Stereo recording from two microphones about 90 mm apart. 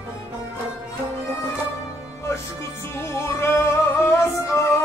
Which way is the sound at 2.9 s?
30° left (ahead or behind).